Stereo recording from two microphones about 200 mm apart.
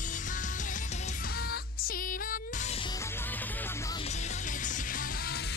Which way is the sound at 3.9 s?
35° left (ahead or behind).